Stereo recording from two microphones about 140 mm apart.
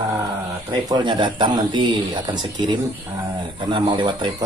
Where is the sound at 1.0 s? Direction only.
35° right (ahead or behind).